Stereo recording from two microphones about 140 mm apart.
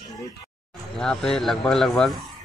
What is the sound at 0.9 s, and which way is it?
Speech, 5° left (ahead or behind).